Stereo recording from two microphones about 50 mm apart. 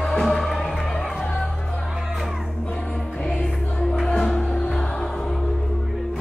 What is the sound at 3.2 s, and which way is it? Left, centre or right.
Music, left.